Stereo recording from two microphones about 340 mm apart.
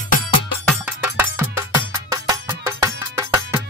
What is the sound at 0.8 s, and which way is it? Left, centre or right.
Music, centre.